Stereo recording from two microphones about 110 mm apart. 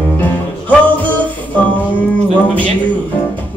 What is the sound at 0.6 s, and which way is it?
Music, 15° left (ahead or behind).